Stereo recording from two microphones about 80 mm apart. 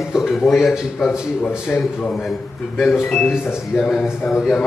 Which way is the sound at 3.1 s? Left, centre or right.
Left.